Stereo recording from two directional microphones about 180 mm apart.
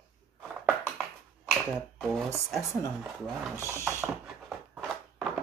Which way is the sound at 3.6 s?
15° left (ahead or behind).